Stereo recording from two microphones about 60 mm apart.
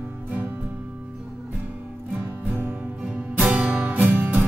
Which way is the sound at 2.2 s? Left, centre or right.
Right.